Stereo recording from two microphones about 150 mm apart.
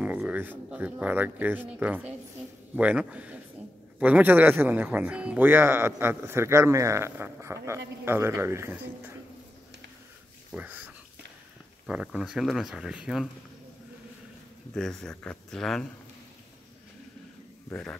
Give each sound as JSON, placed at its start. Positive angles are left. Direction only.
{"t": 0.0, "sound": "speech", "side_deg": -10}
{"t": 10.5, "sound": "speech", "side_deg": -10}
{"t": 11.9, "sound": "speech", "side_deg": -5}
{"t": 14.7, "sound": "speech", "side_deg": 5}